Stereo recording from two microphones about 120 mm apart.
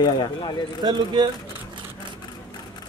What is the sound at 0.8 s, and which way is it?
Speech, 40° right (ahead or behind).